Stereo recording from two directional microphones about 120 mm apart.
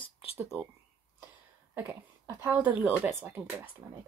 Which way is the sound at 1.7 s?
15° right (ahead or behind).